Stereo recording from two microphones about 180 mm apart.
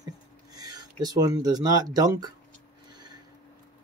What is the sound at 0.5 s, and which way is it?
Speech, 20° right (ahead or behind).